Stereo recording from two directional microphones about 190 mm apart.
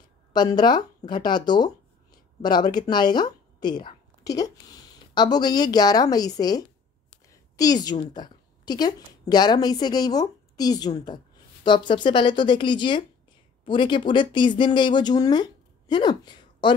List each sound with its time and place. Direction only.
0.3 s a woman's voice: 20° left (ahead or behind)